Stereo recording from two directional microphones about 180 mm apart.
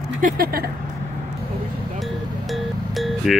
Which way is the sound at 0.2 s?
55° right (ahead or behind).